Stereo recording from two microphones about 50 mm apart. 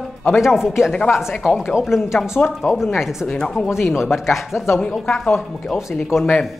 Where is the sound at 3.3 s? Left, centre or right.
Centre.